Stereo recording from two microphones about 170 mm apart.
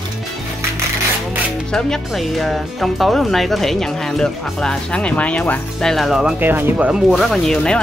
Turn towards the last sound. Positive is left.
turn(degrees=5)  # may be behind; listen again after turning